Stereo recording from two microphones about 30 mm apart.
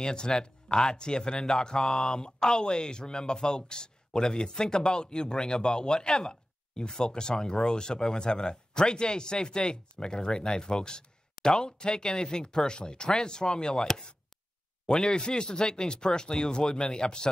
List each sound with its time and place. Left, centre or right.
0.0 s speech: left
1.8 s speech: centre